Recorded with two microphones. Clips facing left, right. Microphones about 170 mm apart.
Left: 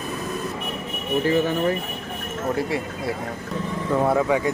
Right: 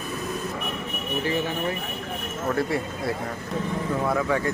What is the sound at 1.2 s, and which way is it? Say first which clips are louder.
Speech: left 6 dB; 45° left (ahead or behind).